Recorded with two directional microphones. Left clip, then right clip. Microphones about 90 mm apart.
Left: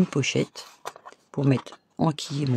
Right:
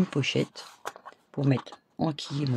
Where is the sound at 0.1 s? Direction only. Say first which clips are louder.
Left 2 dB; 40° left (ahead or behind).